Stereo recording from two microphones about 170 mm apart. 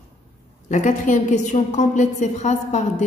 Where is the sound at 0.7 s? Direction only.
45° left (ahead or behind).